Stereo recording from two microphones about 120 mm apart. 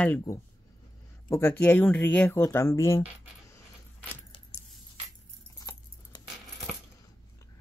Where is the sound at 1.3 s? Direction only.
15° left (ahead or behind).